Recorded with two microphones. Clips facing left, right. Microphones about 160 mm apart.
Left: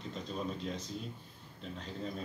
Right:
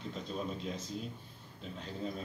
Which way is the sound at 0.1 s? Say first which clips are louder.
Left 1 dB; centre (ahead or behind).